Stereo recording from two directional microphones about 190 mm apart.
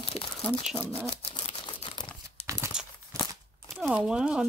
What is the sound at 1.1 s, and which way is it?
Crumpling, 30° left (ahead or behind).